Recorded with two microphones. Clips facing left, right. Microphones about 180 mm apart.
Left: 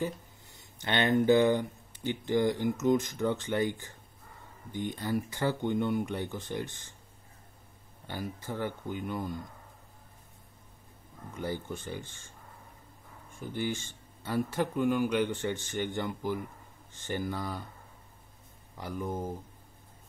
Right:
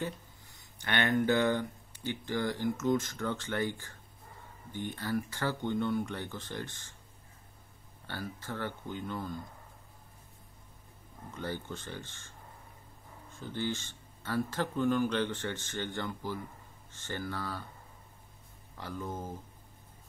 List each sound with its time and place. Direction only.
0.7 s speech: 20° left (ahead or behind)
8.1 s speech: 15° left (ahead or behind)
11.3 s speech: 10° left (ahead or behind)
13.4 s speech: 15° left (ahead or behind)
18.8 s speech: 15° left (ahead or behind)